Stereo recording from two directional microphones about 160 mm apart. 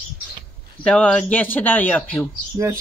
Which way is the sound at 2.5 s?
20° right (ahead or behind).